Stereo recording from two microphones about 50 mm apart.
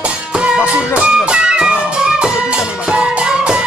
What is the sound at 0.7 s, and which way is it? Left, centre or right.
Music, right.